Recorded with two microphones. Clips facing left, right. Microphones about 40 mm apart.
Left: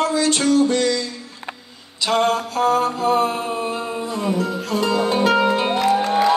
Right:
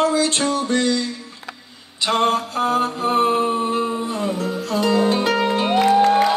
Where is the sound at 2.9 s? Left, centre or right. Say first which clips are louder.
Even; right.